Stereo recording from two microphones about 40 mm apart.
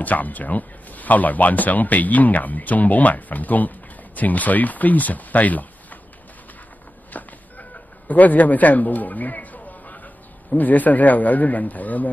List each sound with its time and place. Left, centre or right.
0.0 s speech: left
7.1 s chicken: left
8.1 s a man's voice: left